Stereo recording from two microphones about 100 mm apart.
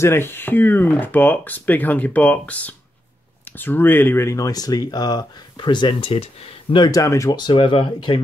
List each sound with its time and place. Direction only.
0.0 s speech: 25° left (ahead or behind); by 6.2 s 60° left (ahead or behind)
6.9 s speech: 35° left (ahead or behind)
7.3 s speech: 50° left (ahead or behind)